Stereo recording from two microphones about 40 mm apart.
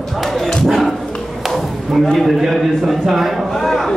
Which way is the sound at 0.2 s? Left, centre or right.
Centre.